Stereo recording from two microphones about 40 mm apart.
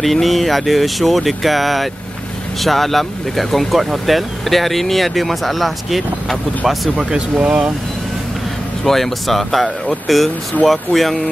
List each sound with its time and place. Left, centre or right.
0.0 s speech: centre
7.0 s speech: right
8.8 s speech: centre